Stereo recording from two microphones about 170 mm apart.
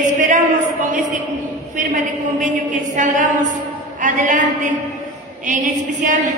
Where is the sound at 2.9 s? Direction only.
50° right (ahead or behind).